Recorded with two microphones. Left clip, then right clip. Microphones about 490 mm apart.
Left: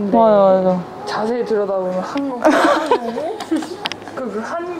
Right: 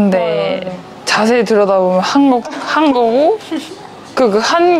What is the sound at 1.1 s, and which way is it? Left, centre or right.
Speech, right.